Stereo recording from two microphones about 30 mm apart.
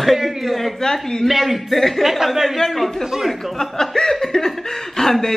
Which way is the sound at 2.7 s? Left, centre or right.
Centre.